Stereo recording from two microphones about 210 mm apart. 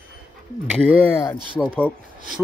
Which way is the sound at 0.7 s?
Centre (ahead or behind).